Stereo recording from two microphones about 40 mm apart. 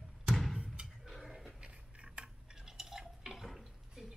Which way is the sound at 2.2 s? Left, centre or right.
Right.